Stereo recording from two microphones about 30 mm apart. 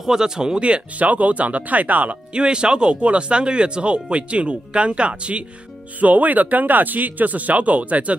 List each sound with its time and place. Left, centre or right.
0.1 s speech: right
0.6 s speech: right
1.0 s speech: right
2.3 s speech: right
5.9 s speech: right
7.0 s speech: right